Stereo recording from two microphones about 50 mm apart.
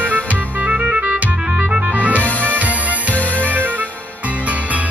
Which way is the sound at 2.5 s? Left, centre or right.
Right.